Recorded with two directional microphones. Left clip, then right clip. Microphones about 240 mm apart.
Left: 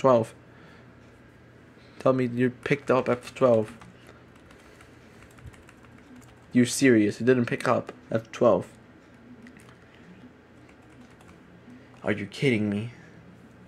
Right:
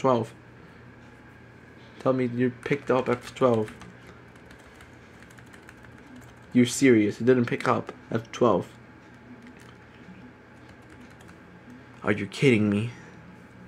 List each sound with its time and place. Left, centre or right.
0.0 s speech: centre
2.0 s speech: centre
6.5 s speech: centre
12.0 s speech: centre